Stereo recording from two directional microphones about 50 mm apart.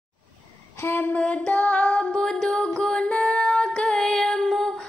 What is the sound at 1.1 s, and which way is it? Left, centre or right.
Music, left.